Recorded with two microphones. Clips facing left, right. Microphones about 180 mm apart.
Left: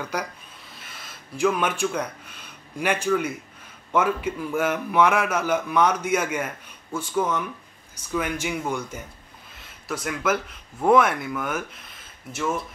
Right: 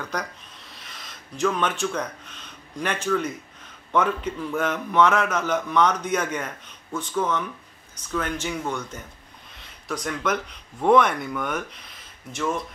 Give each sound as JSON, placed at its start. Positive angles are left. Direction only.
{"t": 0.0, "sound": "a man's voice", "side_deg": 10}